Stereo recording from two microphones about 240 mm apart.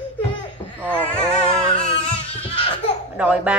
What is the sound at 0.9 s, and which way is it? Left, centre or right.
Speech, centre.